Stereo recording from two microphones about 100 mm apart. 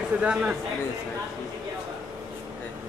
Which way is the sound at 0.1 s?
15° right (ahead or behind).